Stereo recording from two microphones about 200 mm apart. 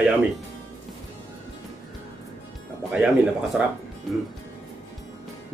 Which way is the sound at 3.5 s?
5° right (ahead or behind).